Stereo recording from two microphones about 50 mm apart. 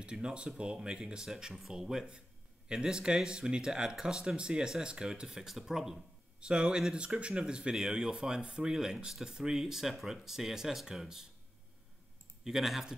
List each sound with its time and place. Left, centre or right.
0.0 s speech: centre
6.4 s speech: centre
12.4 s speech: centre